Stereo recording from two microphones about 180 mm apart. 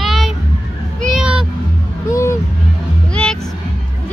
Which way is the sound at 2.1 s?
15° left (ahead or behind).